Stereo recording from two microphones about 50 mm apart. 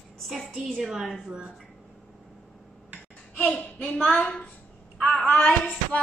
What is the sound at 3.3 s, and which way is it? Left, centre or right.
Speech, left.